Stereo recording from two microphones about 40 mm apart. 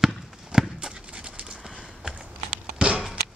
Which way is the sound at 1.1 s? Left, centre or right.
Right.